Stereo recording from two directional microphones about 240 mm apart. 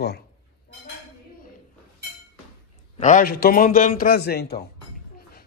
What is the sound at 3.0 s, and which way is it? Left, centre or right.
Speech, left.